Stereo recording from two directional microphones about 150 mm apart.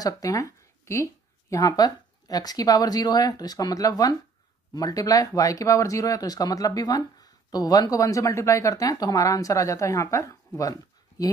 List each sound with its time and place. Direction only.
0.0 s speech: 20° left (ahead or behind)